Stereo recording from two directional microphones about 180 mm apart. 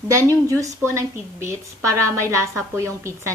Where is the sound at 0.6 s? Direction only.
15° right (ahead or behind).